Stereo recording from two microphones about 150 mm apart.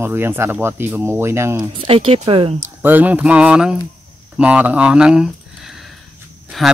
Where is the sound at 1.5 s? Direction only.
40° right (ahead or behind).